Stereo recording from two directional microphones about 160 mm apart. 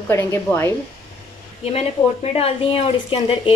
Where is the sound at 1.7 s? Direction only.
40° left (ahead or behind).